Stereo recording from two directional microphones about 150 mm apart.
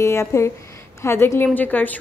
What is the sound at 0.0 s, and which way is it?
A woman's voice, 20° left (ahead or behind).